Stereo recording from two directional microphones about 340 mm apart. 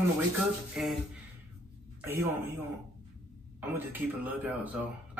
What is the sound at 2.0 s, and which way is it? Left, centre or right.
Speech, centre.